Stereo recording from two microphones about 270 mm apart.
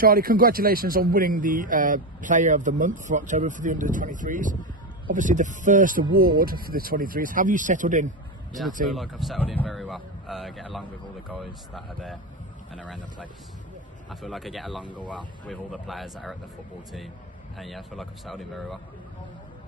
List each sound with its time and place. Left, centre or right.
0.0 s a man's voice: right
8.8 s speech: centre
14.8 s speech: centre
15.4 s speech: centre
17.6 s speech: centre